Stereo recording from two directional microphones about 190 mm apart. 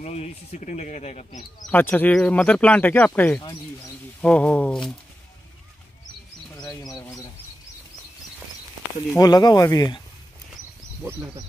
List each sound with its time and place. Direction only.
0.0 s speech: 35° left (ahead or behind)
1.7 s speech: 10° left (ahead or behind)
6.5 s a sound: 20° left (ahead or behind)
6.9 s bird: 15° left (ahead or behind)
9.1 s speech: 20° left (ahead or behind)
11.0 s speech: 10° right (ahead or behind)